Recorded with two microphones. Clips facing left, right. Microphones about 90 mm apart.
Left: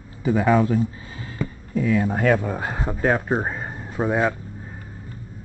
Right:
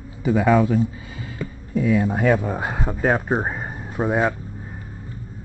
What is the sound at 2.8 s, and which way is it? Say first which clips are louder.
Speech: even; centre (ahead or behind).